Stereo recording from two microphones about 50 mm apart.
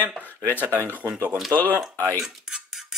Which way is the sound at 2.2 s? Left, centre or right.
Centre.